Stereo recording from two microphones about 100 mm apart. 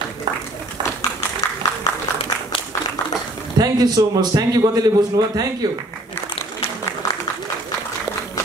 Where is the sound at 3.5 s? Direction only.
40° right (ahead or behind).